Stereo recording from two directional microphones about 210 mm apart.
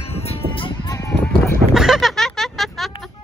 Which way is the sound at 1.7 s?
Centre (ahead or behind).